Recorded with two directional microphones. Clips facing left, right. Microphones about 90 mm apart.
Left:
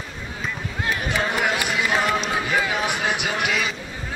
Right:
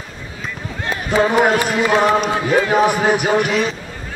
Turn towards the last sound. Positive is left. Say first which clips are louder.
# right 8 dB
turn(degrees=-40)  # may be behind; listen again after turning